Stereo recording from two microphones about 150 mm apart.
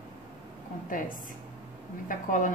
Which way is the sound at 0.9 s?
65° left (ahead or behind).